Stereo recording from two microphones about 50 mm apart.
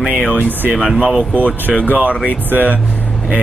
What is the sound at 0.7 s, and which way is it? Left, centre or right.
Speech, centre.